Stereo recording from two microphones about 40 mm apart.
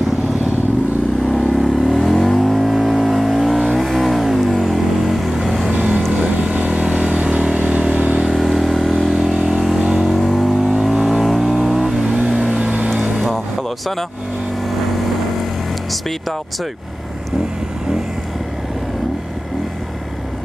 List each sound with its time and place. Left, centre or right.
1.3 s vehicle: centre
6.6 s vehicle: right
8.1 s vehicle: centre
9.5 s vehicle: centre
10.1 s vehicle: centre
13.3 s vehicle: centre